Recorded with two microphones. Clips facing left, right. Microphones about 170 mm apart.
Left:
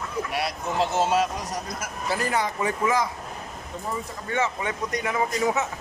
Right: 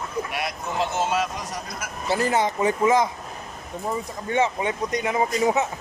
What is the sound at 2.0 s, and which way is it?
A man's voice, 25° right (ahead or behind).